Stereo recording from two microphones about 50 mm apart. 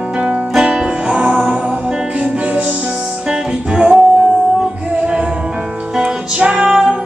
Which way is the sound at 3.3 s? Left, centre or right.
Right.